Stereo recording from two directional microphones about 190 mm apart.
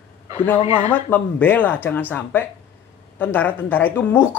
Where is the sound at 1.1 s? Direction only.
10° left (ahead or behind).